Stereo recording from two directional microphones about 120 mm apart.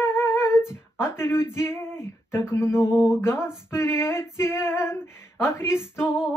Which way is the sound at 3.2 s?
20° left (ahead or behind).